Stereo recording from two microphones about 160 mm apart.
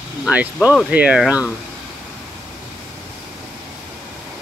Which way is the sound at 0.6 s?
10° right (ahead or behind).